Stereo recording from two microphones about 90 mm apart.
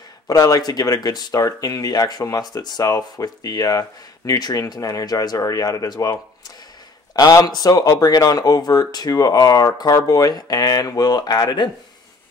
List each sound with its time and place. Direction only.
0.3 s speech: 45° left (ahead or behind)
7.2 s speech: 45° left (ahead or behind)